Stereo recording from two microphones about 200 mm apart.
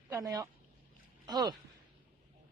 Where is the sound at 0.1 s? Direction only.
15° right (ahead or behind).